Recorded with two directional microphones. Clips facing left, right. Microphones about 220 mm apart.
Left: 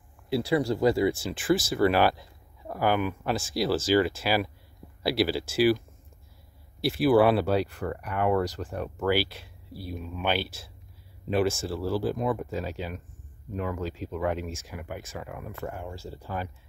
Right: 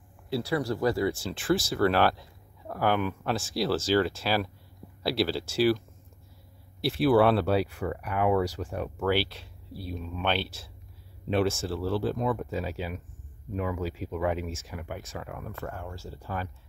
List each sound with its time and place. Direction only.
0.3 s speech: 15° left (ahead or behind)
6.8 s speech: centre (ahead or behind)
15.7 s speech: 15° left (ahead or behind)